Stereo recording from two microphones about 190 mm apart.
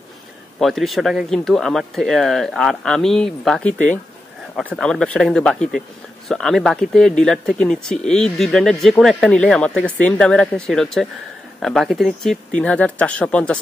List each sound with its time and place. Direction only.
0.6 s speech: centre (ahead or behind)